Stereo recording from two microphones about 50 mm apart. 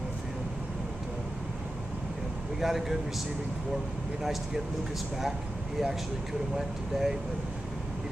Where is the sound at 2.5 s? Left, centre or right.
Centre.